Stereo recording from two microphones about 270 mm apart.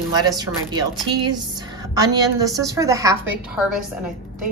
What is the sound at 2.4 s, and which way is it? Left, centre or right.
A woman's voice, centre.